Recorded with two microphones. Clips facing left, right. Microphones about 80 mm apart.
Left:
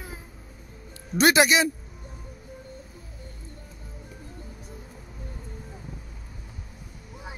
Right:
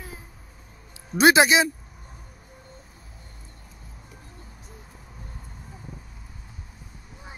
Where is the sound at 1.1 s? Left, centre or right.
Right.